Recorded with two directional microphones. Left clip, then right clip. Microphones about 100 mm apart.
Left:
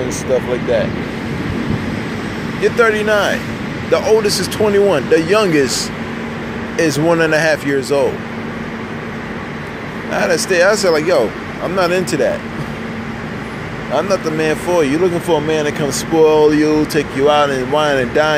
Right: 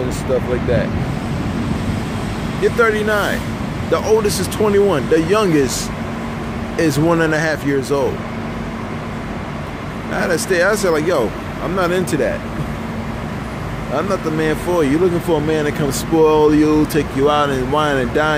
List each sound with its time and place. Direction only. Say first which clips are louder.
2.6 s speech: left 2 dB; 20° right (ahead or behind)
6.8 s speech: left 2 dB; 25° right (ahead or behind)
10.1 s speech: left 3 dB; 20° right (ahead or behind)
13.9 s speech: left 3 dB; 20° right (ahead or behind)